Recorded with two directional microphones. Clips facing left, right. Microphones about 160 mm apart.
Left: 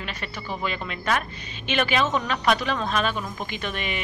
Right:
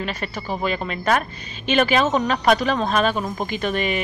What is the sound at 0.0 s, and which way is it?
Speech, 40° right (ahead or behind).